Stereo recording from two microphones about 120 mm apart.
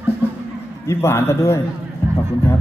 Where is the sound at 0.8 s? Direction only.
20° left (ahead or behind).